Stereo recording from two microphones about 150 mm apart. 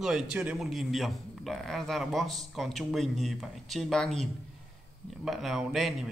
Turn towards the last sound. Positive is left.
turn(degrees=0)  # may be behind; listen again after turning